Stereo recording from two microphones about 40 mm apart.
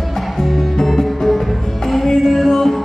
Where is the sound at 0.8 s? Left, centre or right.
Centre.